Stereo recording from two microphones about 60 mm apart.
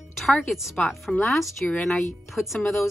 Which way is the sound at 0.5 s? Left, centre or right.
Centre.